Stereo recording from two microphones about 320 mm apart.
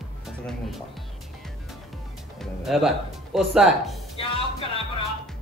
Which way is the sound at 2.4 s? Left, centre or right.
Centre.